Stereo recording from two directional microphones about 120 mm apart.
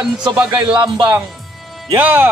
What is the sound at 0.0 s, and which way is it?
Speech, 35° right (ahead or behind).